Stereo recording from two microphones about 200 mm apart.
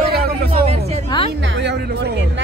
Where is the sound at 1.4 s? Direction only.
60° right (ahead or behind).